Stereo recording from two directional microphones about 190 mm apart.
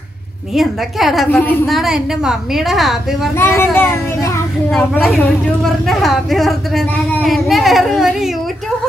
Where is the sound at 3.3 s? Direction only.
10° left (ahead or behind).